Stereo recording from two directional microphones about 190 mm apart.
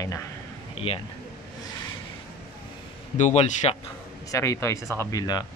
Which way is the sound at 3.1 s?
40° left (ahead or behind).